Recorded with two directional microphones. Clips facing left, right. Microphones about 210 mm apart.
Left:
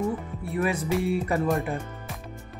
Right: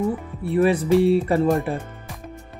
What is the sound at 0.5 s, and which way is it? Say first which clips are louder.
Speech: right 8 dB; 30° right (ahead or behind).